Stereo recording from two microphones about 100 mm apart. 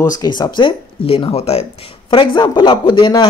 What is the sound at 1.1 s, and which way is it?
Speech, 80° left.